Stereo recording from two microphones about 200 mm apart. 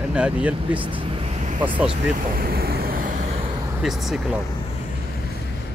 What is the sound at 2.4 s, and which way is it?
Vehicle, 50° right (ahead or behind).